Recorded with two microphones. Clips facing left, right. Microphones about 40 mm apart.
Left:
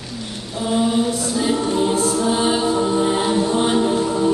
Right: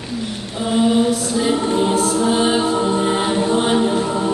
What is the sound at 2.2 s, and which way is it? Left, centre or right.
A capella, centre.